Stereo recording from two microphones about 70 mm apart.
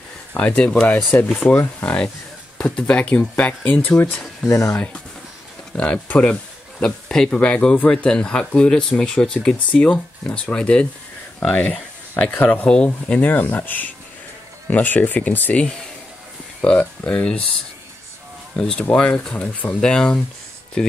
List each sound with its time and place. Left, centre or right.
0.3 s speech: left
4.5 s speech: left
5.8 s speech: centre
7.2 s speech: centre
12.6 s speech: centre
16.6 s speech: centre
18.6 s speech: centre